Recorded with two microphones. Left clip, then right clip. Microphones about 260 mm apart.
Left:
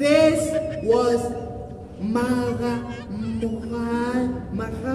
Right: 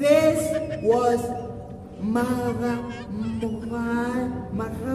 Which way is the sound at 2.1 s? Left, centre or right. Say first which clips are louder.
Left 2 dB; centre.